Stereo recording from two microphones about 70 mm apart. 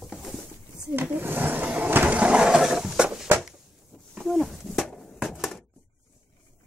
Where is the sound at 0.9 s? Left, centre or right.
Right; by 5.6 s centre.